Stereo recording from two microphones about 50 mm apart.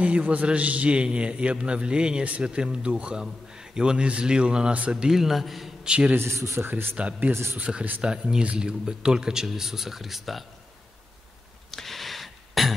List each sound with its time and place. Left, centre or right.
0.0 s a man's voice: right
5.0 s a man's voice: centre
5.9 s a man's voice: right
6.1 s a man's voice: right
6.7 s speech: right
7.0 s a man's voice: right
8.0 s speech: centre
11.7 s a sound: centre